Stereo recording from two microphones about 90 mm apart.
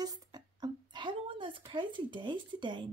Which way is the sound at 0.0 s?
50° right (ahead or behind).